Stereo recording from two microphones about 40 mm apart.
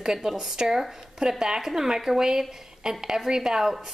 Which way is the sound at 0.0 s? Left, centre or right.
Centre.